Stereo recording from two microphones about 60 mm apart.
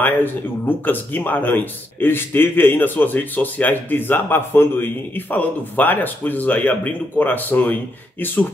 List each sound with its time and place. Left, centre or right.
0.0 s speech: left